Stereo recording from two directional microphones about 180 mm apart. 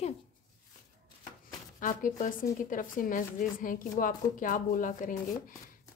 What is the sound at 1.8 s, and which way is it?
Speech, 45° left (ahead or behind).